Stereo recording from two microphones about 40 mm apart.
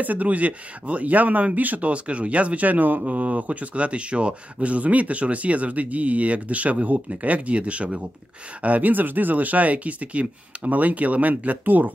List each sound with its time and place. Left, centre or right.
0.0 s speech: right
8.6 s speech: right